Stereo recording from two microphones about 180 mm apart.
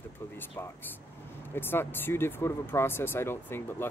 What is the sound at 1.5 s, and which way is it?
Speech, 10° left (ahead or behind).